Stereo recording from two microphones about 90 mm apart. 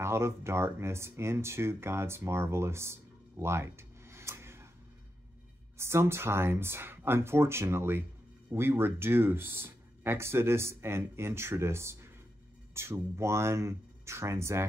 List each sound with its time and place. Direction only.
0.0 s speech: 30° right (ahead or behind)
5.8 s speech: 30° right (ahead or behind)